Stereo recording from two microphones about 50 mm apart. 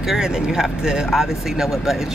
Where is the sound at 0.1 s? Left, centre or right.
Centre.